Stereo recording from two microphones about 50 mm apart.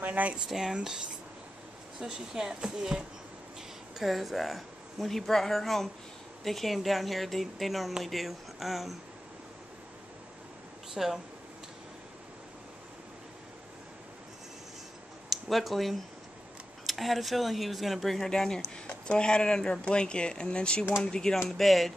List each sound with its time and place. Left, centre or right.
0.0 s speech: right
0.5 s speech: centre
2.0 s speech: centre
4.0 s a woman's voice: centre
11.0 s speech: centre
15.2 s a woman's voice: centre